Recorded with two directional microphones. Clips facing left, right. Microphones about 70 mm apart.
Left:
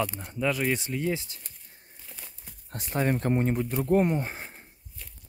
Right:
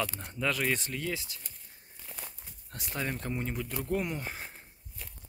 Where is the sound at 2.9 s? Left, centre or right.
Left.